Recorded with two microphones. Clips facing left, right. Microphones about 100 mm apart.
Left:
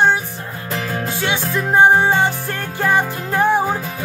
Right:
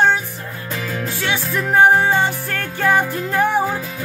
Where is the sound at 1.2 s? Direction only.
20° left (ahead or behind).